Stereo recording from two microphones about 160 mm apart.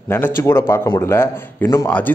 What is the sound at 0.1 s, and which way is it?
Speech, 15° left (ahead or behind).